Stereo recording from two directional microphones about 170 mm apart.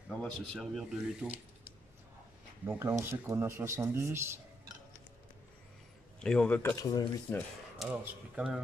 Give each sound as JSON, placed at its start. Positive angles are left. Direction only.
{"t": 0.2, "sound": "speech", "side_deg": 0}
{"t": 6.2, "sound": "speech", "side_deg": 5}
{"t": 6.8, "sound": "speech", "side_deg": 25}
{"t": 7.3, "sound": "speech", "side_deg": 10}
{"t": 7.9, "sound": "speech", "side_deg": -10}